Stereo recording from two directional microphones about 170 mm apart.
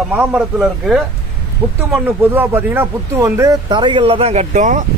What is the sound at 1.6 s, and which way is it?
Speech, 30° right (ahead or behind).